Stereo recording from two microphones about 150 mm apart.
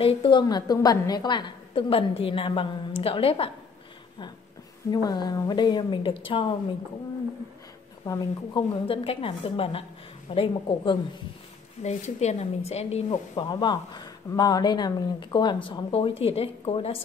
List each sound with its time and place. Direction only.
0.0 s a woman's voice: 35° left (ahead or behind)
4.9 s speech: 30° left (ahead or behind)
8.0 s speech: 20° left (ahead or behind)
8.8 s a woman's voice: 40° left (ahead or behind)
11.8 s speech: 50° left (ahead or behind)
13.1 s speech: 30° left (ahead or behind)